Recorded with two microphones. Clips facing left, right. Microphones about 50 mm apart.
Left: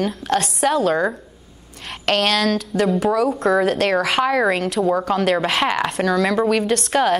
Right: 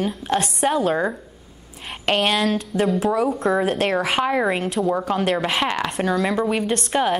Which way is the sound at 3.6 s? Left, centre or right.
Left.